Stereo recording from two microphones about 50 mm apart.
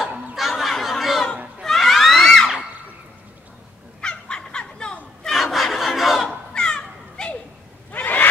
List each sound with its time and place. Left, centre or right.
0.4 s a sound: centre
1.6 s cat: centre
2.2 s screaming: centre
4.0 s fowl: centre
5.3 s battle cry: centre
6.5 s a sound: centre
7.9 s neigh: left